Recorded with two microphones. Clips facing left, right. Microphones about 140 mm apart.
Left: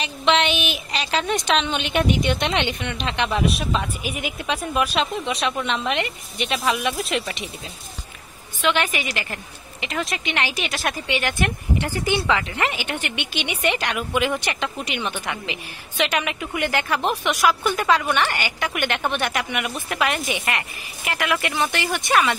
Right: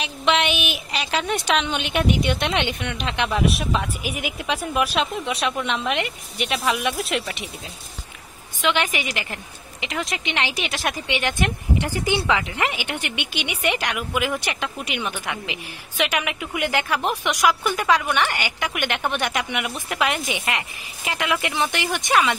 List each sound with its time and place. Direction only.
0.0 s speech: 10° right (ahead or behind)
8.5 s speech: 15° right (ahead or behind)